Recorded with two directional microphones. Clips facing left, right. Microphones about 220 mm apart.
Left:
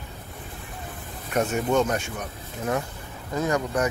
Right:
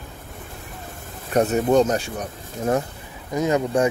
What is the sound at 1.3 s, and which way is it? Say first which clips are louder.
Speech: right 5 dB; 35° right (ahead or behind).